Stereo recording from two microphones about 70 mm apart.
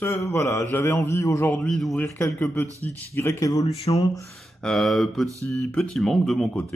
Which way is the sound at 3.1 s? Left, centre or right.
Left.